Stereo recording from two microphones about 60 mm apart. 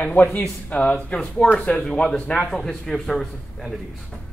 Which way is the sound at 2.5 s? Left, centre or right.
Centre.